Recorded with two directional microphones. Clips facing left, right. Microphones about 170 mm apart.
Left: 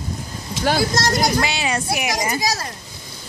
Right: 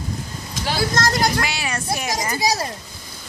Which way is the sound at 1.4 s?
25° left (ahead or behind).